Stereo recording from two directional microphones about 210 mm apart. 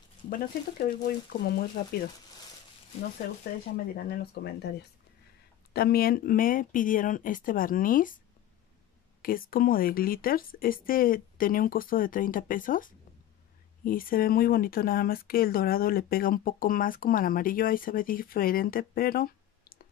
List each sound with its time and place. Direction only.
0.3 s speech: 45° left (ahead or behind)
3.2 s speech: 45° left (ahead or behind)
9.2 s speech: 40° left (ahead or behind)